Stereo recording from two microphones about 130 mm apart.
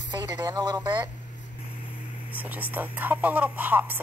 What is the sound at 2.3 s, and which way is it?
Speech, 10° right (ahead or behind).